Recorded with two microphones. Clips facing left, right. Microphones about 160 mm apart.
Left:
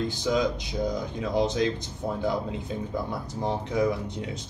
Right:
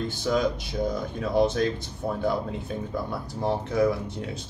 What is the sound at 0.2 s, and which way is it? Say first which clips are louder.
Speech: right 2 dB; 20° left (ahead or behind).